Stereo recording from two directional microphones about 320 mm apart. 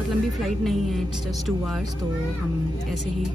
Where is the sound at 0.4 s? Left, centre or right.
Centre.